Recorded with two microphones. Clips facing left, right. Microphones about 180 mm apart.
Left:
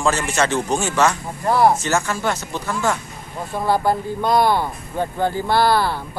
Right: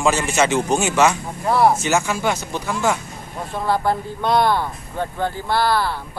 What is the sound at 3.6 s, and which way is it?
Speech, 5° left (ahead or behind).